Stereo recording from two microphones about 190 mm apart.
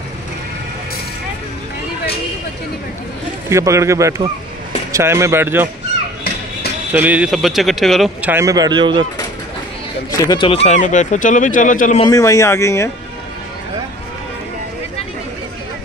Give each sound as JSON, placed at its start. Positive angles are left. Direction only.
{"t": 3.4, "sound": "speech", "side_deg": -15}
{"t": 6.9, "sound": "speech", "side_deg": -10}
{"t": 10.1, "sound": "speech", "side_deg": 20}
{"t": 12.0, "sound": "speech", "side_deg": 20}